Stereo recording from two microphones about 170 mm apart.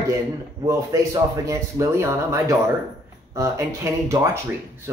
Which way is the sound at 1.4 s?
20° right (ahead or behind).